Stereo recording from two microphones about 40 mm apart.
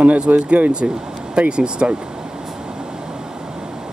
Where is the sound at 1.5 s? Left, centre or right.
Right.